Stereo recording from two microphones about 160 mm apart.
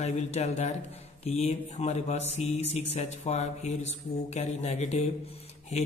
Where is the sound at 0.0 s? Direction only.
45° left (ahead or behind).